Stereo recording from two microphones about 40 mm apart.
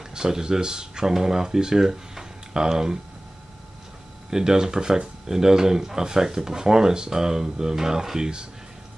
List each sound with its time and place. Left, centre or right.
0.1 s speech: centre
4.3 s speech: centre